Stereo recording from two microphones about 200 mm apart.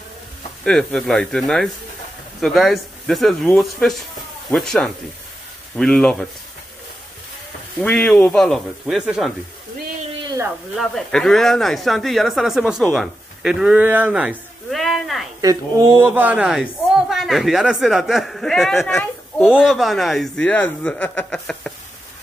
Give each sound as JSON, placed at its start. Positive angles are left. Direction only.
{"t": 0.7, "sound": "a woman's voice", "side_deg": 5}
{"t": 7.8, "sound": "a woman's voice", "side_deg": 5}
{"t": 10.2, "sound": "a sound", "side_deg": -15}
{"t": 10.8, "sound": "a woman's voice", "side_deg": 0}
{"t": 15.4, "sound": "a woman's voice", "side_deg": -15}